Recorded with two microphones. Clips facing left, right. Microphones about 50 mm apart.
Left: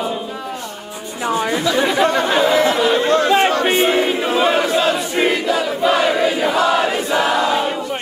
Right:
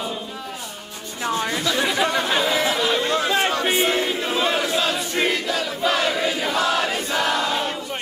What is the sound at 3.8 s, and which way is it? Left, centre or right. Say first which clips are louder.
Battle cry: left 6 dB; left.